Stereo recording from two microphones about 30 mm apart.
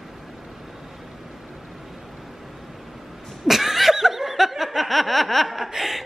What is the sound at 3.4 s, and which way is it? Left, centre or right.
Laughter, centre.